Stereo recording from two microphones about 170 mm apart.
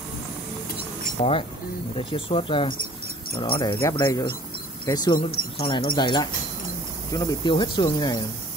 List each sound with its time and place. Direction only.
1.2 s speech: 40° left (ahead or behind)